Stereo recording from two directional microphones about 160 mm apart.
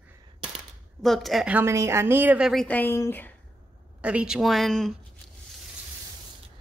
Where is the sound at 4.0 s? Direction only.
5° right (ahead or behind).